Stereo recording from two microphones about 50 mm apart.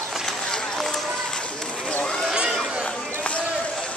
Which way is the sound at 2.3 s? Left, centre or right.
Centre.